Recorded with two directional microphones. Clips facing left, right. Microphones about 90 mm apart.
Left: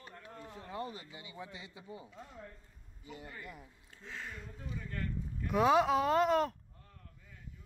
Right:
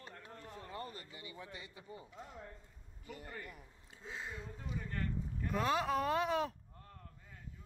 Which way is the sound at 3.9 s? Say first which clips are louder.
Even; 10° right (ahead or behind).